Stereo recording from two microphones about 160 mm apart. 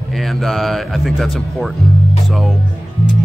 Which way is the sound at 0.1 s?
Centre (ahead or behind).